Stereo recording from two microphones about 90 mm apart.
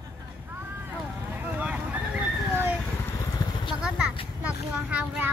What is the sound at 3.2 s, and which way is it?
Vehicle, 50° left (ahead or behind).